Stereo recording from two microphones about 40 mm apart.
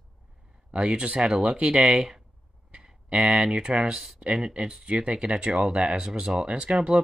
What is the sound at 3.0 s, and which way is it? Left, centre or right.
Speech, right.